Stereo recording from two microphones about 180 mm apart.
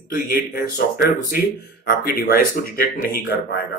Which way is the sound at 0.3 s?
60° left (ahead or behind).